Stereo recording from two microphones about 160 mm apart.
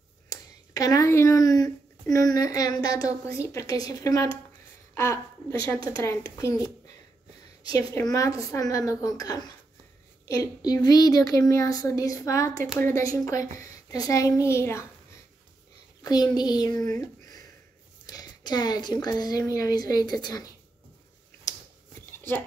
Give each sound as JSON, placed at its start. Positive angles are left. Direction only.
{"t": 0.3, "sound": "a woman's voice", "side_deg": 20}
{"t": 7.7, "sound": "speech", "side_deg": 20}
{"t": 16.0, "sound": "speech", "side_deg": 25}
{"t": 16.8, "sound": "a sound", "side_deg": 25}
{"t": 18.0, "sound": "speech", "side_deg": 25}
{"t": 21.5, "sound": "a sound", "side_deg": 20}